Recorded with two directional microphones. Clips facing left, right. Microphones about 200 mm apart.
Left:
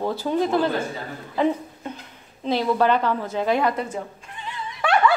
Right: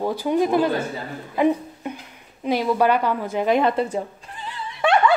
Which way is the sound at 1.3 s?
15° right (ahead or behind).